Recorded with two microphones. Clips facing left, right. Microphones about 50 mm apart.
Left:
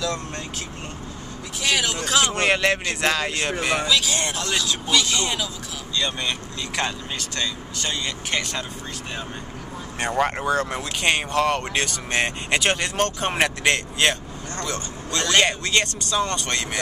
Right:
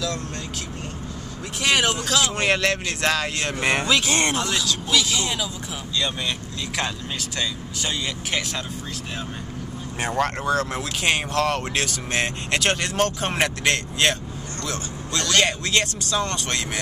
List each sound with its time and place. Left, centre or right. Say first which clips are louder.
1.6 s speech: right 3 dB; right
2.4 s speech: left 1 dB; centre
3.6 s speech: right 2 dB; right
4.8 s speech: left 1 dB; centre
10.1 s speech: left 1 dB; centre
15.1 s speech: left 1 dB; centre
15.4 s speech: left 1 dB; centre